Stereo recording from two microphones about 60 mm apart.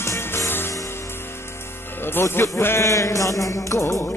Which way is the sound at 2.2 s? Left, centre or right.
Left.